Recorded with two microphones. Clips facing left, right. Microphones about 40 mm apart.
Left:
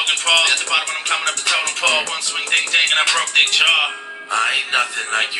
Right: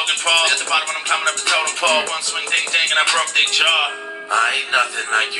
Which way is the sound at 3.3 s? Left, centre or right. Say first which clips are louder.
Left 2 dB; centre.